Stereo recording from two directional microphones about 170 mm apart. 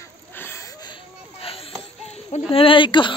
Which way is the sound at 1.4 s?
35° left (ahead or behind).